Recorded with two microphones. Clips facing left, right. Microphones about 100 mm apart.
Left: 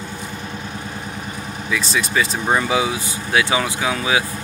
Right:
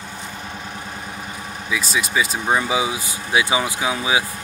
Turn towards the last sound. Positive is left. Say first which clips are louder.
# left 1 dB
turn(degrees=-15)  # may be behind; listen again after turning